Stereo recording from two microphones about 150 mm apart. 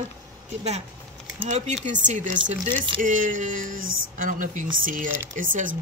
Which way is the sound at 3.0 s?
60° right (ahead or behind).